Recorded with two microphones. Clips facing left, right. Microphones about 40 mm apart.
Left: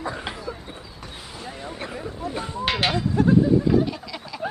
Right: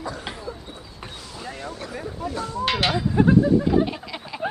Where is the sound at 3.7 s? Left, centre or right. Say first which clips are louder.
Even; right.